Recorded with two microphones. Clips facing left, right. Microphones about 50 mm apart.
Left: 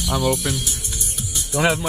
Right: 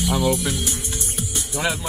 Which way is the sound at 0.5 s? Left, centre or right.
Right.